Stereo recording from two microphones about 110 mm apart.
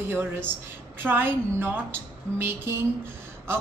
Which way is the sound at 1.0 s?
20° right (ahead or behind).